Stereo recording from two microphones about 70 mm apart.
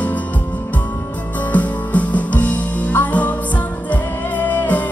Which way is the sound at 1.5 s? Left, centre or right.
Left.